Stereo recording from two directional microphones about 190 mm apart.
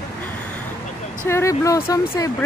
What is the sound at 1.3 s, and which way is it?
Speech, 15° left (ahead or behind).